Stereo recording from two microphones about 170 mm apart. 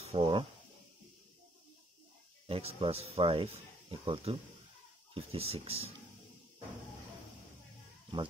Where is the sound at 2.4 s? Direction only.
35° right (ahead or behind).